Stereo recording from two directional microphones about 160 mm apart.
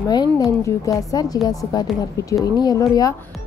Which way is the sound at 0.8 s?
25° left (ahead or behind).